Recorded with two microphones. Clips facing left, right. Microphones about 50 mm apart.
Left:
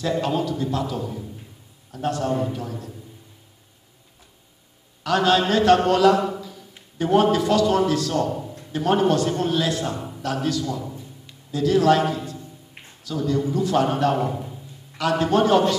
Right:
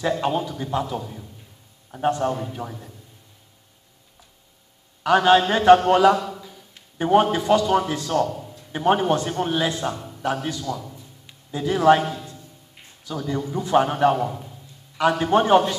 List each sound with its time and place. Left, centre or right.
0.2 s a man's voice: centre
5.0 s a man's voice: right
6.1 s a sound: centre
7.0 s a man's voice: centre
8.3 s a sound: centre
8.7 s a man's voice: centre
9.9 s a sound: centre
10.2 s a man's voice: centre
10.6 s a man's voice: centre
11.2 s speech: right
13.1 s a man's voice: right
14.1 s a man's voice: centre
15.0 s a man's voice: centre